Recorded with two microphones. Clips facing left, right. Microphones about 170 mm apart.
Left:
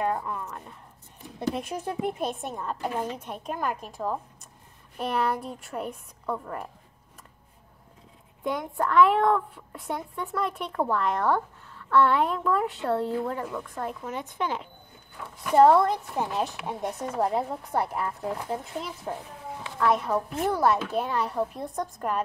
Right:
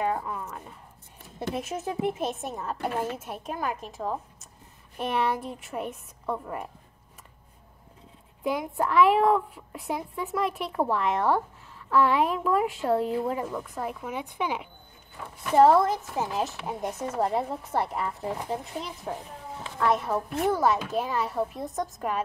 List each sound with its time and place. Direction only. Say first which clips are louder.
0.0 s a woman's voice: even; 5° right (ahead or behind)
8.5 s a woman's voice: right 1 dB; 5° right (ahead or behind)